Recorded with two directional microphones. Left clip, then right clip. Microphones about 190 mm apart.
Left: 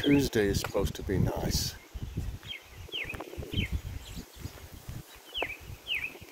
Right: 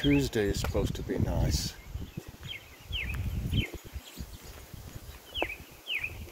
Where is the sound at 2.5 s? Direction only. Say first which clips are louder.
Even; 50° left (ahead or behind).